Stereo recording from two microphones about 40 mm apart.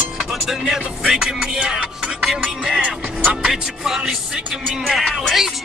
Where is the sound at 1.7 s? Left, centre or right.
Right.